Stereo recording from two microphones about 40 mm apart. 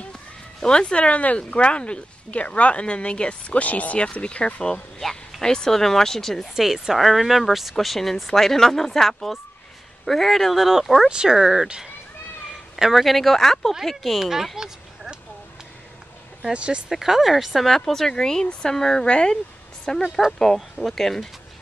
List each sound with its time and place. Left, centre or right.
0.1 s speech: centre
6.5 s speech: centre
11.1 s speech: right
12.7 s speech: centre
16.5 s speech: right
16.9 s speech: centre
17.6 s speech: centre